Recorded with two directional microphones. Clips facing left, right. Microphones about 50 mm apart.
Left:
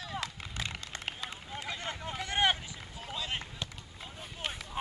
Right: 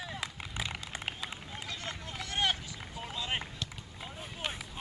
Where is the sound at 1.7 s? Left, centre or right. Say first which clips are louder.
Left 4 dB; left.